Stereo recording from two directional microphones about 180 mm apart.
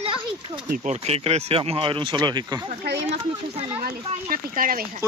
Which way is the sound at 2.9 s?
65° right (ahead or behind).